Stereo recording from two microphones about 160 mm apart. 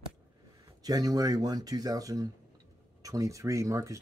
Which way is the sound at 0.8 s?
25° right (ahead or behind).